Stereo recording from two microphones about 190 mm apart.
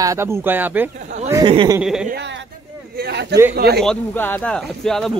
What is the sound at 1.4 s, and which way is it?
Speech, 25° right (ahead or behind).